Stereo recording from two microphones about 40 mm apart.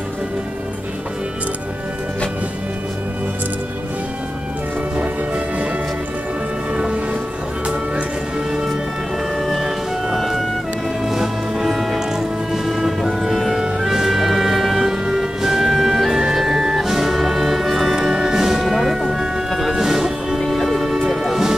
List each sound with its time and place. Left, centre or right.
6.7 s music: right
9.5 s music: centre
13.6 s music: centre
17.9 s music: centre
20.3 s music: centre